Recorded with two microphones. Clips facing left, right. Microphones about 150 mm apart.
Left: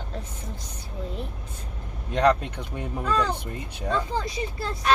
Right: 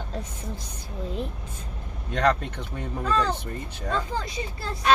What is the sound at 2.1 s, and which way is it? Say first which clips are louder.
Speech: left 2 dB; 10° left (ahead or behind).